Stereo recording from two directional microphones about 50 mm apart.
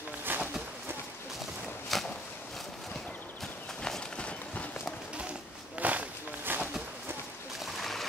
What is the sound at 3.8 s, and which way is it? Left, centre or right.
Run, centre.